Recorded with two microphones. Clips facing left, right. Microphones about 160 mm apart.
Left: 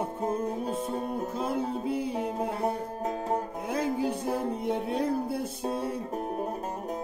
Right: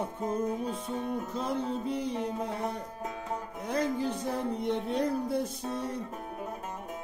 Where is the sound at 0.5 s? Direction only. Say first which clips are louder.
Left 2 dB; 35° left (ahead or behind).